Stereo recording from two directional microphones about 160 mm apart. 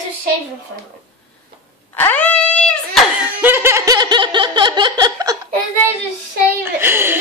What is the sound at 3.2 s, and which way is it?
Laughter, 10° right (ahead or behind).